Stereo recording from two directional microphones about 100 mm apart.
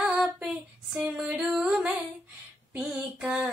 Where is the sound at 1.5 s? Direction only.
5° right (ahead or behind).